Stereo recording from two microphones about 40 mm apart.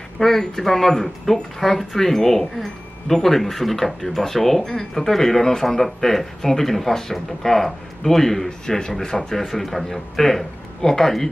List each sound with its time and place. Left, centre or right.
0.2 s speech: centre
9.5 s speech: centre